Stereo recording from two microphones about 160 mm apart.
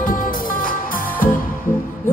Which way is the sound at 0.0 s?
60° left (ahead or behind).